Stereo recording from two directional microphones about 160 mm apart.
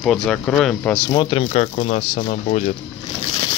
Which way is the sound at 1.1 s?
35° left (ahead or behind).